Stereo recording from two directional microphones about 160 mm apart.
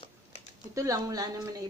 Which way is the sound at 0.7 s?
20° right (ahead or behind).